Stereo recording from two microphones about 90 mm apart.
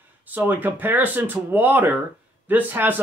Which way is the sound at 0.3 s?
20° right (ahead or behind).